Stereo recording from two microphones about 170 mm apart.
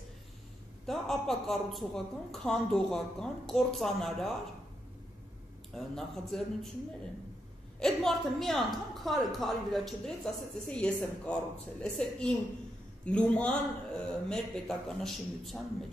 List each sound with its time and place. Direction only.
0.8 s a woman's voice: centre (ahead or behind)
5.8 s a woman's voice: centre (ahead or behind)
7.8 s a woman's voice: centre (ahead or behind)